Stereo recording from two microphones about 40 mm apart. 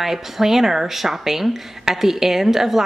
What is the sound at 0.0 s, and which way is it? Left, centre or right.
Speech, centre.